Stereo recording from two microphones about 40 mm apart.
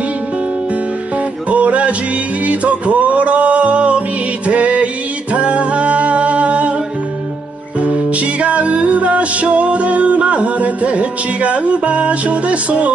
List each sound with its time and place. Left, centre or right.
1.5 s music: right
7.8 s music: right